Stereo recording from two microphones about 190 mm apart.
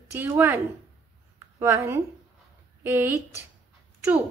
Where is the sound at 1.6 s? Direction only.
15° right (ahead or behind).